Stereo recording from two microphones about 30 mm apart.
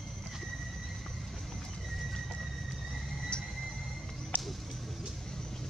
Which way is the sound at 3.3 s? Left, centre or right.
Left.